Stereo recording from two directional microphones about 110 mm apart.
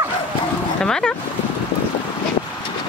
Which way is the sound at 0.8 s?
5° left (ahead or behind).